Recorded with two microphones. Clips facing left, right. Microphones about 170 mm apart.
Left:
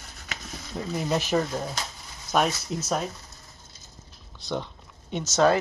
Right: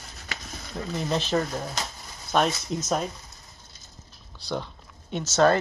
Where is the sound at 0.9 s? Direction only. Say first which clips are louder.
Left 1 dB; 10° left (ahead or behind).